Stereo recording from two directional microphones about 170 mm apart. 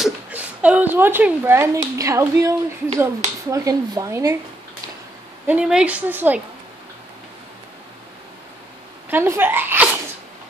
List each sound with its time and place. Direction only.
0.0 s speech: 10° right (ahead or behind)
5.5 s a woman's voice: 5° right (ahead or behind)
9.1 s a woman's voice: 15° right (ahead or behind)